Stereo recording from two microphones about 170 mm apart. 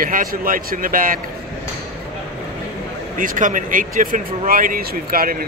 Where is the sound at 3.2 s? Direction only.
50° right (ahead or behind).